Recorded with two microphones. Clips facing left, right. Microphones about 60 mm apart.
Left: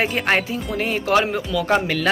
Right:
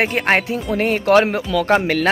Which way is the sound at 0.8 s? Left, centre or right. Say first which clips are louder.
Right 5 dB; right.